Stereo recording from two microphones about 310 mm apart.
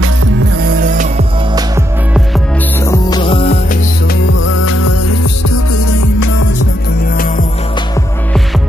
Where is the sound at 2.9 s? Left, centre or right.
Centre.